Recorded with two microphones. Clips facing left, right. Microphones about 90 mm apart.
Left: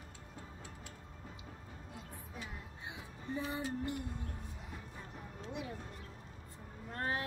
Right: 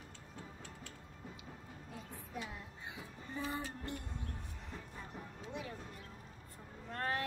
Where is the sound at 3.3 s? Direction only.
5° left (ahead or behind).